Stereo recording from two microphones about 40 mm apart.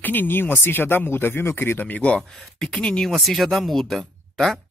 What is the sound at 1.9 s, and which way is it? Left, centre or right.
Speech, left.